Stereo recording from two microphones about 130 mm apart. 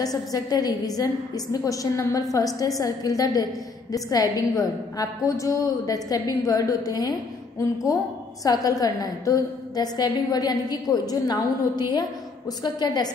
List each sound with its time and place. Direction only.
0.0 s a woman's voice: 30° left (ahead or behind)